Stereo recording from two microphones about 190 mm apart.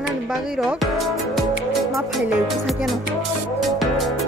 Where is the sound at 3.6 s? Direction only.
Centre (ahead or behind).